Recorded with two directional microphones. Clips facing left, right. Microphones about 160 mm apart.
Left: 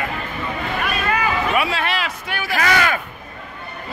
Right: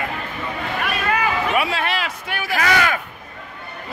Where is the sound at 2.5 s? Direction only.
10° right (ahead or behind).